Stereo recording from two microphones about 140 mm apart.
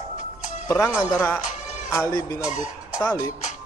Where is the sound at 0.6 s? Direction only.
20° left (ahead or behind).